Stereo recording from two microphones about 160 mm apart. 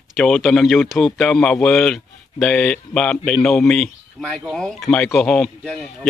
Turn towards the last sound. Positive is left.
turn(degrees=5)  # may be behind; listen again after turning